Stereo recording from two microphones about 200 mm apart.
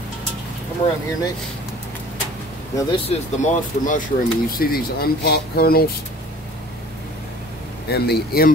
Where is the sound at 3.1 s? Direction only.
40° left (ahead or behind).